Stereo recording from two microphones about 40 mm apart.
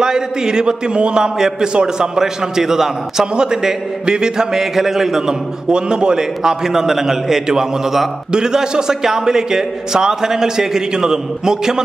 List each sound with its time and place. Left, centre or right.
0.0 s a man's voice: centre
5.7 s a man's voice: right